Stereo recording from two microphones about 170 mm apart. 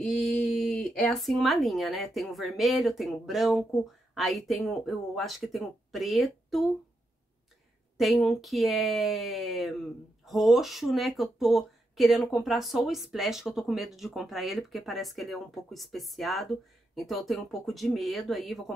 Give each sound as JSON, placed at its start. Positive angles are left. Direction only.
{"t": 0.0, "sound": "a sound", "side_deg": 0}
{"t": 0.6, "sound": "speech", "side_deg": 0}
{"t": 8.0, "sound": "speech", "side_deg": 0}